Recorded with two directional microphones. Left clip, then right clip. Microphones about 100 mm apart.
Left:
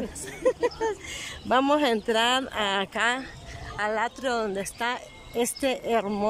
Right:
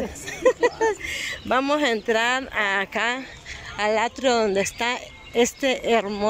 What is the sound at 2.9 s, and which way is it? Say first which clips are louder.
Speech: right 1 dB; centre (ahead or behind).